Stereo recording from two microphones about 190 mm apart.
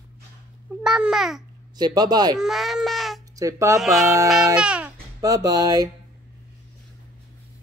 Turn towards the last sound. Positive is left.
turn(degrees=-20)  # may be behind; listen again after turning